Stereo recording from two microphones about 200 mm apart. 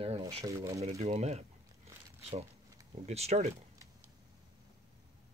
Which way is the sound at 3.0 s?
30° right (ahead or behind).